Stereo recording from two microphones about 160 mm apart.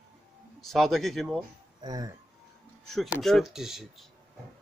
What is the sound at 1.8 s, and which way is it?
Speech, 25° right (ahead or behind).